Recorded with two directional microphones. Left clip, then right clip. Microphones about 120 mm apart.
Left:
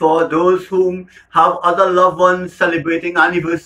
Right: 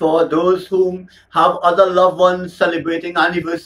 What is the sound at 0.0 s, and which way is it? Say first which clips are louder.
Speech: left 1 dB; 5° left (ahead or behind).